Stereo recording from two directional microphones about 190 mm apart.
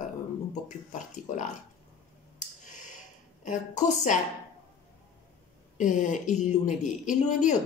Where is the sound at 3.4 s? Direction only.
40° left (ahead or behind).